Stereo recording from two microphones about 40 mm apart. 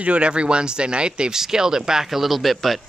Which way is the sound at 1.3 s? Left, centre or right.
Centre.